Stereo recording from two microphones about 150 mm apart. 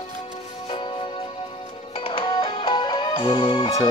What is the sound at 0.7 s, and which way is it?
Music, 35° left (ahead or behind).